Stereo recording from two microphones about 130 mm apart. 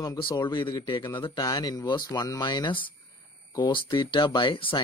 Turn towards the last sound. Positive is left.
turn(degrees=40)  # may be behind; listen again after turning